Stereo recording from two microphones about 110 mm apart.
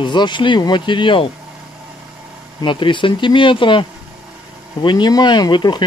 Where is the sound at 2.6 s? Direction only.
50° left (ahead or behind).